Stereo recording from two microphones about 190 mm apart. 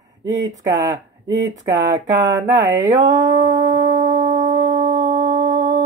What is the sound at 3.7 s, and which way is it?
Howl, 40° right (ahead or behind).